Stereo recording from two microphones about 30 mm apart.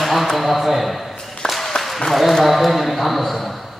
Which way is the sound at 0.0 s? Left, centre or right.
Centre.